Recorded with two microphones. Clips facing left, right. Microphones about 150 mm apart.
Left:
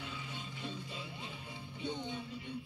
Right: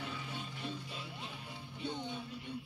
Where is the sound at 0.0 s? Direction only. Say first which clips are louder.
Right 2 dB; 55° right (ahead or behind).